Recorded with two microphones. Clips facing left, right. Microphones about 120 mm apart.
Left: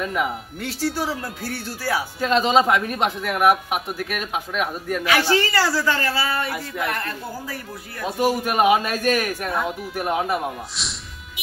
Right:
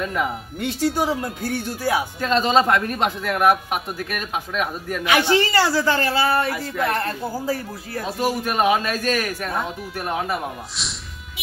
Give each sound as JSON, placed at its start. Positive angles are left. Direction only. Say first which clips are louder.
{"t": 0.0, "sound": "a man's voice", "louder": "even", "side_deg": 5}
{"t": 0.9, "sound": "a man's voice", "louder": "right 4 dB", "side_deg": -20}
{"t": 2.1, "sound": "a man's voice", "louder": "left 2 dB", "side_deg": 5}
{"t": 5.0, "sound": "a man's voice", "louder": "right 2 dB", "side_deg": -20}
{"t": 8.0, "sound": "a man's voice", "louder": "left 2 dB", "side_deg": 5}